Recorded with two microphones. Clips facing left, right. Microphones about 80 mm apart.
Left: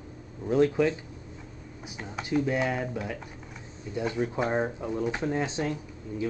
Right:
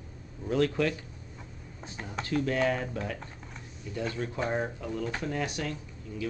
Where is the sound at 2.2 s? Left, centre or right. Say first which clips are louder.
Left 1 dB; centre.